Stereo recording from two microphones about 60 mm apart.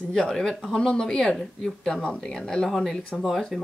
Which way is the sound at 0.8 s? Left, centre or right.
Centre.